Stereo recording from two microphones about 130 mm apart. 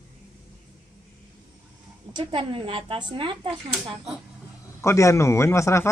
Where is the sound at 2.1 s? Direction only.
40° right (ahead or behind).